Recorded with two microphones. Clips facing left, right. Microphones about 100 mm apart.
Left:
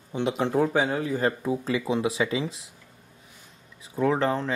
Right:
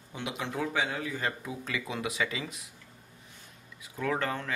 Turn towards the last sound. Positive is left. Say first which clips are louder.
# left 8 dB
turn(degrees=30)  # may be behind; listen again after turning